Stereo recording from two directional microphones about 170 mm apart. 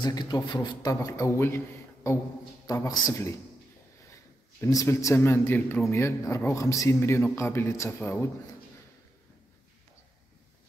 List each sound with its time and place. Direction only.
0.0 s a man's voice: 25° left (ahead or behind)
2.6 s speech: 20° left (ahead or behind)
4.6 s speech: 20° left (ahead or behind)